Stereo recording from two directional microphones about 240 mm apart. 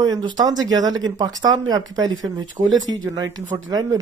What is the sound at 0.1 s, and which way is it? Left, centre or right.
Speech, centre.